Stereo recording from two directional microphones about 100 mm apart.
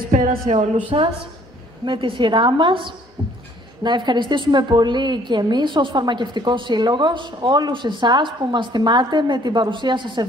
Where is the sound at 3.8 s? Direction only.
50° right (ahead or behind).